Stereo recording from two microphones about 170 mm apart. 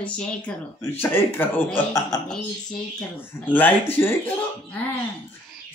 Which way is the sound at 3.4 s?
10° left (ahead or behind).